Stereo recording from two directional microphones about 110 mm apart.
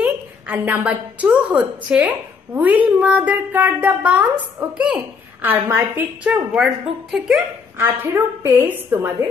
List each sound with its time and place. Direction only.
0.0 s a woman's voice: 15° right (ahead or behind)
6.2 s a woman's voice: 5° right (ahead or behind)
7.7 s a woman's voice: 20° right (ahead or behind)